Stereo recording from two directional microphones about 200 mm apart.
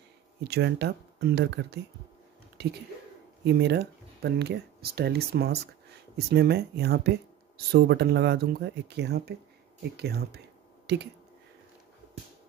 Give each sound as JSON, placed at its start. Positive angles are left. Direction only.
{"t": 0.4, "sound": "speech", "side_deg": -55}